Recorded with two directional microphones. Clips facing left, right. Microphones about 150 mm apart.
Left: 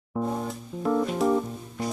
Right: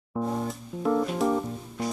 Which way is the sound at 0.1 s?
Centre (ahead or behind).